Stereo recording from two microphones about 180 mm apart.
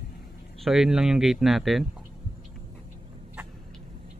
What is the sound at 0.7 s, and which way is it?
Speech, 5° right (ahead or behind).